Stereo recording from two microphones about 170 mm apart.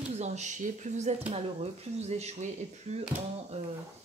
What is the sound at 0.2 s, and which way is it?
Speech, 45° right (ahead or behind).